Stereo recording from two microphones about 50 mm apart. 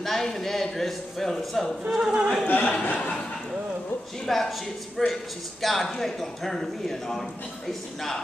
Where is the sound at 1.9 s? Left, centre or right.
Centre.